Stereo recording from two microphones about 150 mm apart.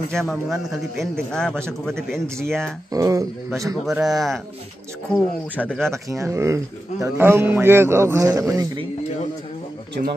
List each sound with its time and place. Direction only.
0.1 s a man's voice: centre (ahead or behind)
2.9 s speech: 25° right (ahead or behind)
3.8 s a man's voice: centre (ahead or behind)
6.0 s a man's voice: 20° right (ahead or behind)